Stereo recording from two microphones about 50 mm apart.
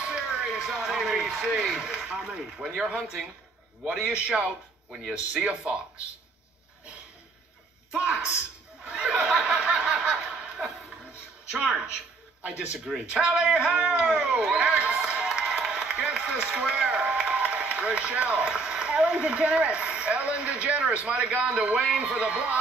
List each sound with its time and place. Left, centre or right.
0.0 s a sound: right
0.7 s speech: centre
7.9 s speech: right
8.8 s snicker: right
11.5 s speech: right
21.7 s speech: right